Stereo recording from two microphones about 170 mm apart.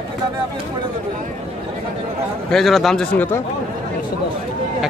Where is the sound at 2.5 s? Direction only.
Centre (ahead or behind).